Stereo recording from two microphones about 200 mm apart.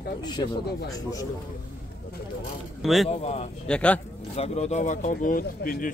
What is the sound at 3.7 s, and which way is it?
Speech, 5° left (ahead or behind).